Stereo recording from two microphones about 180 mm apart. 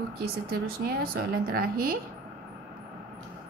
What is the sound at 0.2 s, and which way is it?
A woman's voice, 60° right (ahead or behind).